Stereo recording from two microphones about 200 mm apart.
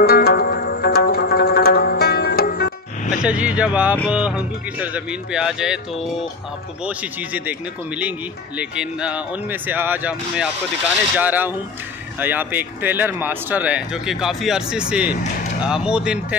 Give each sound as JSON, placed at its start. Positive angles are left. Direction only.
{"t": 0.0, "sound": "zither", "side_deg": 50}
{"t": 3.3, "sound": "speech", "side_deg": -5}